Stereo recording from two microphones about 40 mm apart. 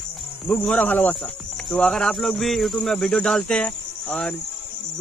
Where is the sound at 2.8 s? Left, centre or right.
Centre.